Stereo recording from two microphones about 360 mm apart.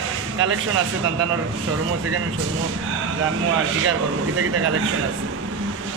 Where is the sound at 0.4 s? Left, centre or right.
Right.